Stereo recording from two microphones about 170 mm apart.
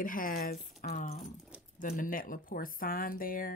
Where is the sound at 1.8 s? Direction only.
55° left (ahead or behind).